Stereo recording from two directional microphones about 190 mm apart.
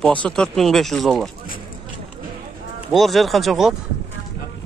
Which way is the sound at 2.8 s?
Centre (ahead or behind).